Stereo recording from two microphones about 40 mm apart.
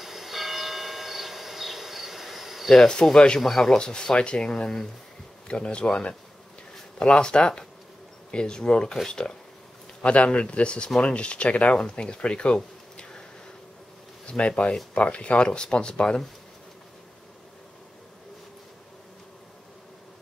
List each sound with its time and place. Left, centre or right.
0.0 s church bell: centre
2.7 s speech: centre
3.7 s speech: left
10.0 s speech: left
12.5 s a sound: centre
14.2 s speech: left